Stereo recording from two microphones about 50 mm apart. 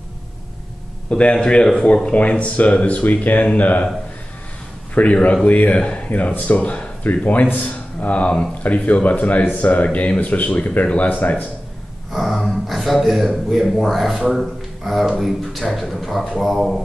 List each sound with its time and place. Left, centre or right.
1.1 s speech: left
4.9 s speech: left
12.1 s speech: centre